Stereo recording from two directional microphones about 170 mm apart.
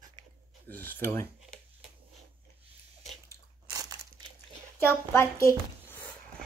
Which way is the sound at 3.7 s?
20° right (ahead or behind).